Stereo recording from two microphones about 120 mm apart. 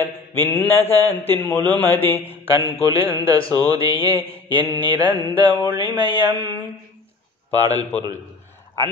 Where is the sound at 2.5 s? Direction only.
45° left (ahead or behind).